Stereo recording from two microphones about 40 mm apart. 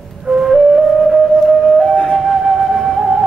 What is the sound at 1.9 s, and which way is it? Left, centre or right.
Flute, left.